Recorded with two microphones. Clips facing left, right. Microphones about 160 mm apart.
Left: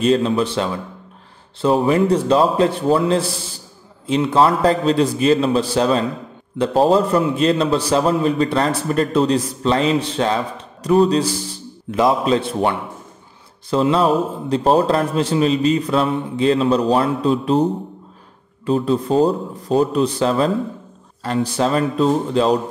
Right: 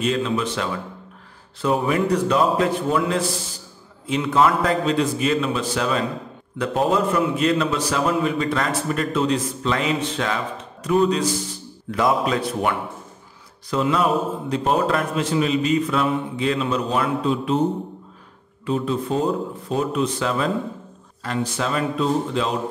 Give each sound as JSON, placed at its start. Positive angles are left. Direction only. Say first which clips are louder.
{"t": 0.0, "sound": "a man's voice", "louder": "left 6 dB", "side_deg": 35}
{"t": 18.7, "sound": "a man's voice", "louder": "left 5 dB", "side_deg": 35}